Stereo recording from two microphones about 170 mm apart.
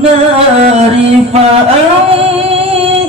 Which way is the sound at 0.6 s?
35° right (ahead or behind).